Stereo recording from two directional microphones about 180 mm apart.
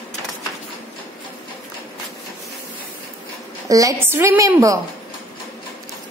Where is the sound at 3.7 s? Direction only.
15° right (ahead or behind).